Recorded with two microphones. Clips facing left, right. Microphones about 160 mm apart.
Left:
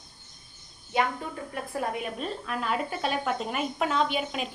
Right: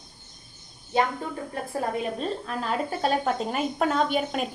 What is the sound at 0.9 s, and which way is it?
A woman's voice, 30° right (ahead or behind).